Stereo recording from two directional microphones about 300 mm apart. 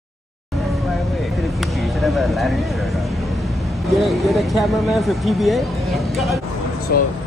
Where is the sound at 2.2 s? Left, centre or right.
Centre.